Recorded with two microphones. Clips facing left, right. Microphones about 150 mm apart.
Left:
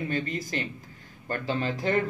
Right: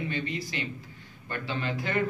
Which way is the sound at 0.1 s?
45° left (ahead or behind).